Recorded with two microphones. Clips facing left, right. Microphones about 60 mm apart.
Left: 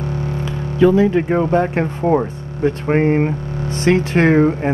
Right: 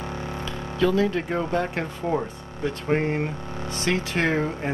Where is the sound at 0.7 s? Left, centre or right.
Left.